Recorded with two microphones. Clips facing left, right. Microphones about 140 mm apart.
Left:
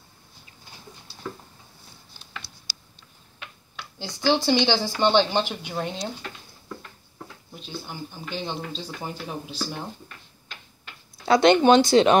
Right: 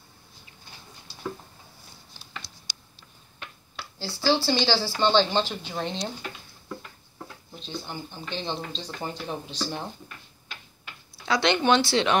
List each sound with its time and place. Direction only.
4.0 s speech: 15° left (ahead or behind)
7.5 s speech: 5° left (ahead or behind)
11.2 s speech: 50° left (ahead or behind)